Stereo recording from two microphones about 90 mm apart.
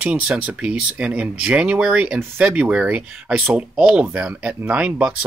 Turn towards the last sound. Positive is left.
turn(degrees=-10)  # may be behind; listen again after turning